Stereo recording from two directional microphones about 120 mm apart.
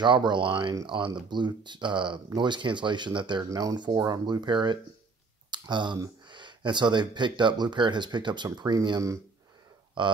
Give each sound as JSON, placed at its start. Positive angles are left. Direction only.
{"t": 0.0, "sound": "speech", "side_deg": -40}